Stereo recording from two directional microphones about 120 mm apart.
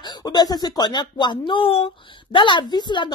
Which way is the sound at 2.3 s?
40° left (ahead or behind).